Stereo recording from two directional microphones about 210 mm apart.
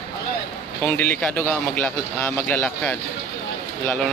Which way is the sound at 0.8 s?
10° left (ahead or behind).